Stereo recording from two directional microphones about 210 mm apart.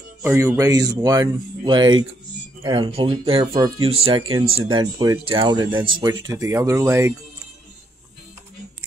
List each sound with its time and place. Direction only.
0.2 s speech: 10° right (ahead or behind)